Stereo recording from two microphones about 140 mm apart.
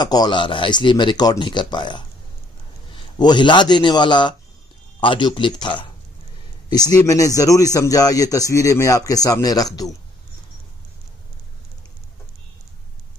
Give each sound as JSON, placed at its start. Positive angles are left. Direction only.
{"t": 0.0, "sound": "a man's voice", "side_deg": 30}